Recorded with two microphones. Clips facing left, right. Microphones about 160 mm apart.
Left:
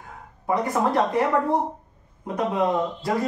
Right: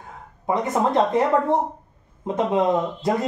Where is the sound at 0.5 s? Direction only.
20° right (ahead or behind).